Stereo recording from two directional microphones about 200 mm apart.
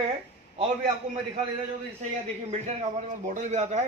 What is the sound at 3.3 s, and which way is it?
Speech, 35° right (ahead or behind).